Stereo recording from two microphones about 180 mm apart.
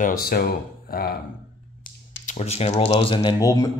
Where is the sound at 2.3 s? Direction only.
35° left (ahead or behind); by 3.7 s 20° left (ahead or behind).